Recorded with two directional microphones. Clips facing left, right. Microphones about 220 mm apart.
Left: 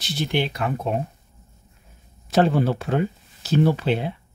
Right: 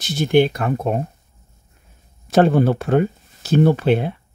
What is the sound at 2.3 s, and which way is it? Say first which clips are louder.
Speech: right 4 dB; 50° right (ahead or behind).